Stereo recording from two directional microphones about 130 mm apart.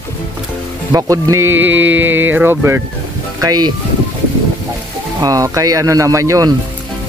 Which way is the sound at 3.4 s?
30° right (ahead or behind).